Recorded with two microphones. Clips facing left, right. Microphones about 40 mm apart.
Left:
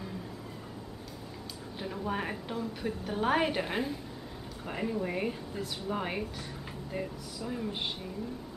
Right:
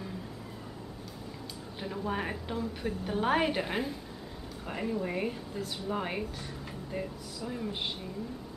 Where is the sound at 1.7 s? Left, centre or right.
Centre.